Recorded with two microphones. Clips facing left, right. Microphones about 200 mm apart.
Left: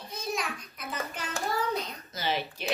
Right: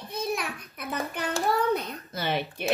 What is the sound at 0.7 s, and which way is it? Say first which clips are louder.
A child's voice: right 7 dB; 60° right (ahead or behind).